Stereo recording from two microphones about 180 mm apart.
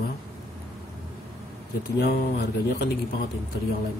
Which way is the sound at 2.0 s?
65° left (ahead or behind).